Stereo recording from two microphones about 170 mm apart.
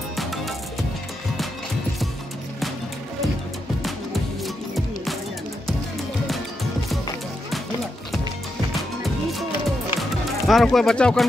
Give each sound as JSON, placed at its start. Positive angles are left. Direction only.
{"t": 0.1, "sound": "music", "side_deg": 0}
{"t": 9.9, "sound": "music", "side_deg": 0}